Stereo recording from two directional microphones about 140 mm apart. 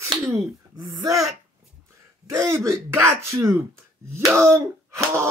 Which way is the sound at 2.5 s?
20° right (ahead or behind).